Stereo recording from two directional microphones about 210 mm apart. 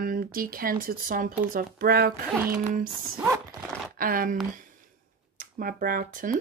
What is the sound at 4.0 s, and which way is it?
Speech, 40° right (ahead or behind).